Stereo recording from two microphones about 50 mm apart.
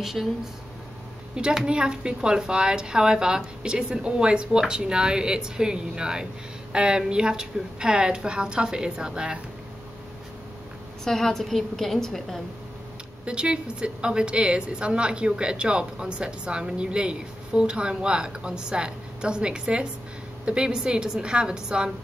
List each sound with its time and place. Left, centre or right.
0.0 s a woman's voice: centre
1.3 s a woman's voice: centre
11.1 s a woman's voice: centre
13.2 s a woman's voice: centre